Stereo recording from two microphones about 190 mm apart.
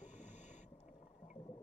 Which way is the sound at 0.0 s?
40° left (ahead or behind).